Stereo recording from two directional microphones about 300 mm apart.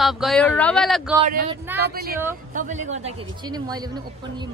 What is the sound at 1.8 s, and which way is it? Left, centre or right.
Speech, right.